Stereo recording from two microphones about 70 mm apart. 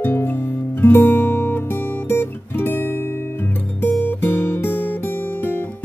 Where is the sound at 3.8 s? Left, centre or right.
Left.